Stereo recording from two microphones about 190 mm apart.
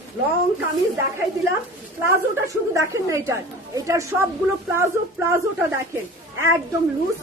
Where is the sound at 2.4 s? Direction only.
15° right (ahead or behind).